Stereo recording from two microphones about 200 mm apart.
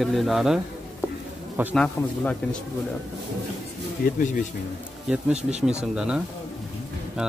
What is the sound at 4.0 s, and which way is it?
Speech, 40° left (ahead or behind).